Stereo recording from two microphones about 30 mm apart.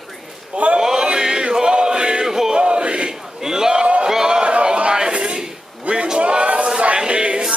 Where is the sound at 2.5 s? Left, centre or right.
Right.